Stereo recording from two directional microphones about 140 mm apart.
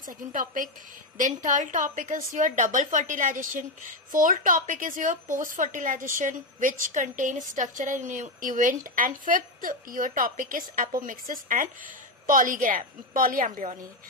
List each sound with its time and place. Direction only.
0.0 s a woman's voice: 70° right (ahead or behind)